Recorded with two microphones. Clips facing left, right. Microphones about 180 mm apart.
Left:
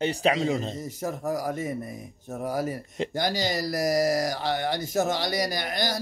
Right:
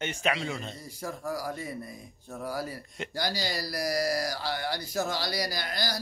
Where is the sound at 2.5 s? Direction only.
20° left (ahead or behind).